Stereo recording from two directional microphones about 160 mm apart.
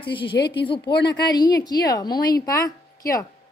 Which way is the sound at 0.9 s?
90° left.